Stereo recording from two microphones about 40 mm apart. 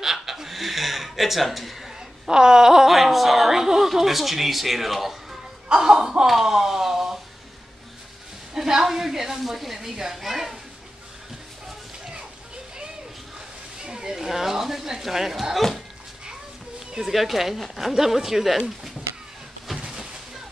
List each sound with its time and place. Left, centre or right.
0.0 s speech: centre
5.7 s speech: centre
6.2 s a sound: centre
8.5 s speech: centre
13.8 s speech: centre
17.0 s speech: centre
19.8 s a sound: centre